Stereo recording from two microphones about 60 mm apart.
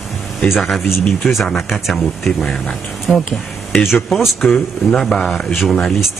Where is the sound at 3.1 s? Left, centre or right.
Left.